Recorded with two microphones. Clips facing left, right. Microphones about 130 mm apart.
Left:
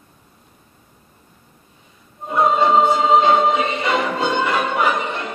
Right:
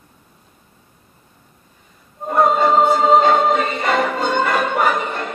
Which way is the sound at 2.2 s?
50° right (ahead or behind).